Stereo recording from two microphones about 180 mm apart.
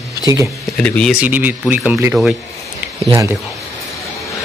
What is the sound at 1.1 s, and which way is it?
Speech, 10° right (ahead or behind).